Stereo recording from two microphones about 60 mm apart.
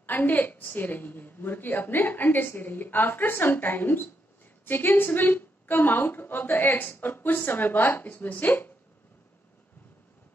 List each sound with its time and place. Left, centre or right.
0.0 s a woman's voice: left